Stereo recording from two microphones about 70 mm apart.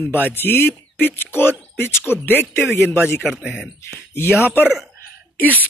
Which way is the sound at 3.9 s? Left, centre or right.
Left.